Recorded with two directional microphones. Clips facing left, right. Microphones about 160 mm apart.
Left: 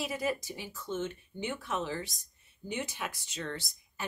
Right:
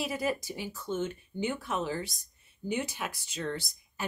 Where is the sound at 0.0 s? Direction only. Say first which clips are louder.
Right 2 dB; 10° right (ahead or behind).